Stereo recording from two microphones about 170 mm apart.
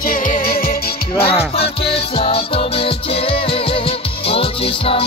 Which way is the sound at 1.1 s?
35° left (ahead or behind).